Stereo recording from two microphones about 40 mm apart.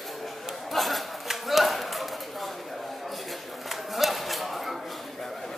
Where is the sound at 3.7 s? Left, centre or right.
Centre.